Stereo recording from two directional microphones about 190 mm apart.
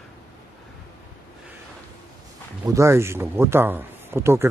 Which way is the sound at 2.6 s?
15° right (ahead or behind).